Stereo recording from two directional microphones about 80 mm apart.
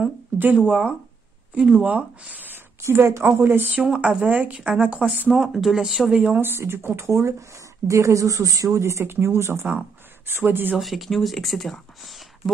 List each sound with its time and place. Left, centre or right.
0.6 s speech: centre
2.8 s a woman's voice: right
3.8 s speech: centre
5.3 s speech: centre
6.4 s a woman's voice: right
10.8 s speech: centre